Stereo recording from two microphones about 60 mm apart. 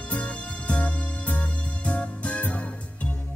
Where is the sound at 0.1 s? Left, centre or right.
Left.